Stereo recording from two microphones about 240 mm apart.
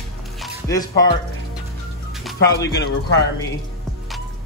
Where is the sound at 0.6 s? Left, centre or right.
Centre.